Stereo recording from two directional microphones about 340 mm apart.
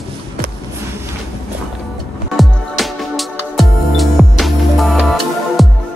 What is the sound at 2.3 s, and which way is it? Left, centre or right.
Music, centre.